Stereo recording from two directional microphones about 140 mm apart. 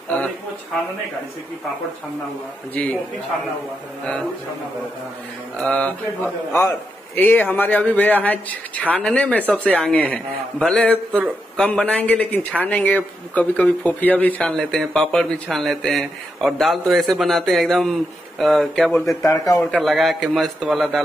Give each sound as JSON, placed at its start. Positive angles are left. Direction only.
{"t": 2.7, "sound": "a man's voice", "side_deg": 10}
{"t": 5.6, "sound": "a man's voice", "side_deg": 10}
{"t": 19.0, "sound": "speech", "side_deg": 25}
{"t": 19.7, "sound": "a man's voice", "side_deg": 0}